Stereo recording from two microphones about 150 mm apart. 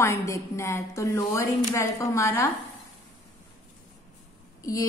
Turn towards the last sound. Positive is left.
turn(degrees=20)  # may be behind; listen again after turning